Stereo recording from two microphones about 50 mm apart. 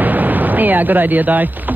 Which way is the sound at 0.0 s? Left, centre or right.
Right.